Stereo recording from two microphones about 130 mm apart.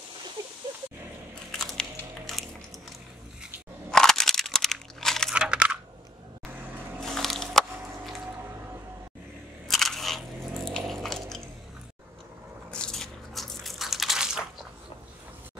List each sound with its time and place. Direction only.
1.8 s biting: centre (ahead or behind)
3.9 s a sound: 5° left (ahead or behind)
5.3 s computer keyboard: 10° right (ahead or behind)
7.0 s a sound: centre (ahead or behind)
9.7 s biting: centre (ahead or behind)
12.7 s biting: 5° left (ahead or behind)